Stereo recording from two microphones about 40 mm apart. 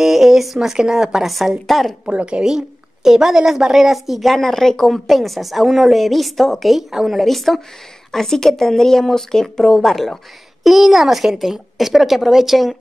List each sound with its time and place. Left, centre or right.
0.0 s speech: centre
1.7 s a woman's voice: centre
2.0 s a woman's voice: right
2.4 s a woman's voice: centre
10.6 s a woman's voice: centre